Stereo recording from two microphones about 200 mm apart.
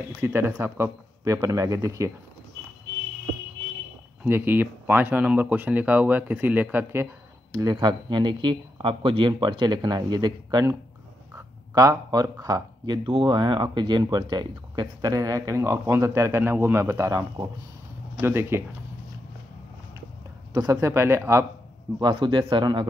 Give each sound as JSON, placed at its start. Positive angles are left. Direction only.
{"t": 0.2, "sound": "speech", "side_deg": -10}
{"t": 4.2, "sound": "speech", "side_deg": -10}
{"t": 7.5, "sound": "speech", "side_deg": -20}
{"t": 20.5, "sound": "speech", "side_deg": -20}
{"t": 22.0, "sound": "speech", "side_deg": -25}